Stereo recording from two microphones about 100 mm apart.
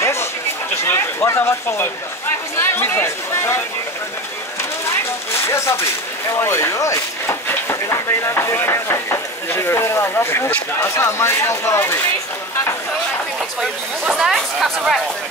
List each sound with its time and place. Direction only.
0.0 s a sound: 25° left (ahead or behind)
0.8 s speech: 25° left (ahead or behind)
4.8 s speech: 30° left (ahead or behind)
13.6 s speech: 5° right (ahead or behind)